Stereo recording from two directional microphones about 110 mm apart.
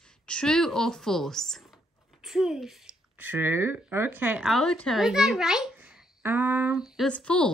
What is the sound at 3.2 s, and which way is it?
A woman's voice, 20° right (ahead or behind).